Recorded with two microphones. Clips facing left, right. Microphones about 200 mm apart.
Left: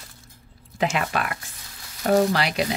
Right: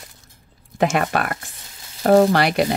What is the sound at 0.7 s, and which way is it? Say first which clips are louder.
Speech: right 5 dB; 45° right (ahead or behind).